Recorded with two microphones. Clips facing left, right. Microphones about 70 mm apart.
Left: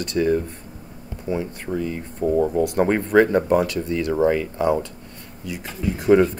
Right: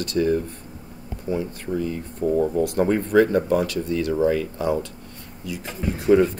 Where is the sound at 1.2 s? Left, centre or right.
Left.